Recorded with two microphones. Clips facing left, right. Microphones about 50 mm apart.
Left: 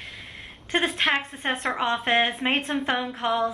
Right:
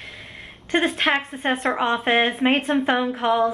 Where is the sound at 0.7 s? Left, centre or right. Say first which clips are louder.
Right 3 dB; centre.